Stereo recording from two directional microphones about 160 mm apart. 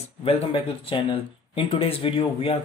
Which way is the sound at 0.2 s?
35° left (ahead or behind).